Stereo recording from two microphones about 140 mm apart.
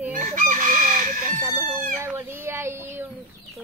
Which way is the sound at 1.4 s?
15° right (ahead or behind).